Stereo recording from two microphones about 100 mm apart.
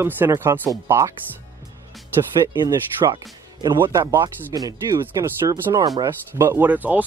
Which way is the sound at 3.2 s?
45° right (ahead or behind).